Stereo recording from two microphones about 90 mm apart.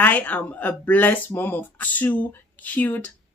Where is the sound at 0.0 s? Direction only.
20° left (ahead or behind).